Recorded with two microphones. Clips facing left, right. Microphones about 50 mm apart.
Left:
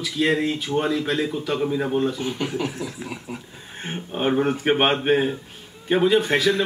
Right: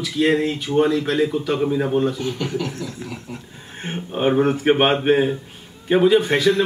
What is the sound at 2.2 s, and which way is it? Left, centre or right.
Speech, centre.